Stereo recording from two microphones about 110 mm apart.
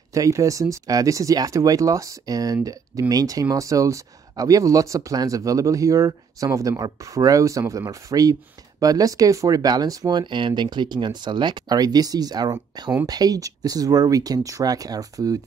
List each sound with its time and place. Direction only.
0.1 s speech: 30° right (ahead or behind)